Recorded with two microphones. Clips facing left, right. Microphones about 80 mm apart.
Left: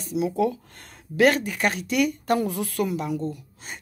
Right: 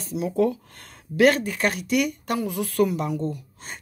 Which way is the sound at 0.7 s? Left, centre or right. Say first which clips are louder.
Even; left.